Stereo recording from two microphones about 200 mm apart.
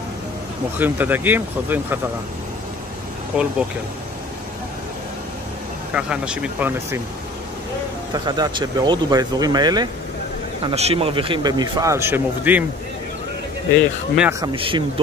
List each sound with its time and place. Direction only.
0.7 s speech: 10° right (ahead or behind)
3.3 s speech: 5° right (ahead or behind)
5.9 s speech: 5° right (ahead or behind)
8.1 s speech: 20° right (ahead or behind)
10.6 s speech: 30° right (ahead or behind); by 12.6 s 10° right (ahead or behind)
13.7 s speech: 5° right (ahead or behind)
14.4 s speech: 25° right (ahead or behind)